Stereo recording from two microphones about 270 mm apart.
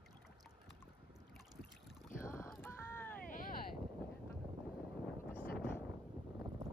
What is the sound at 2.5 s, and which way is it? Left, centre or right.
Vehicle, centre.